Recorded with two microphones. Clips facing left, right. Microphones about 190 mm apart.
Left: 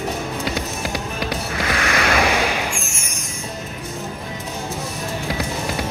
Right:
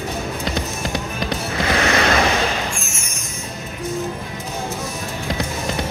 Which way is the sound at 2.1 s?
10° left (ahead or behind).